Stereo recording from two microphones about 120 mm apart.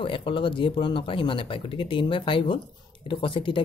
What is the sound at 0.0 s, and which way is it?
Speech, 45° left (ahead or behind).